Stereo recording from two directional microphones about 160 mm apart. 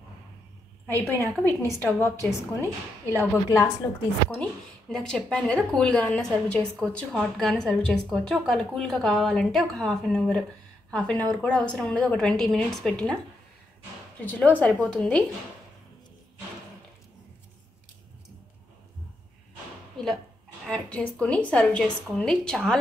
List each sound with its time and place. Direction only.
0.8 s a woman's voice: 15° left (ahead or behind)
2.6 s a woman's voice: 15° right (ahead or behind)
3.4 s a woman's voice: 20° left (ahead or behind)
4.4 s a woman's voice: 5° left (ahead or behind)
14.2 s a woman's voice: 10° left (ahead or behind)
20.0 s a sound: 5° left (ahead or behind)
20.6 s a woman's voice: 5° left (ahead or behind)